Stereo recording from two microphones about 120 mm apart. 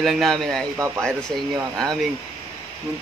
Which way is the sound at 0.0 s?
Centre (ahead or behind).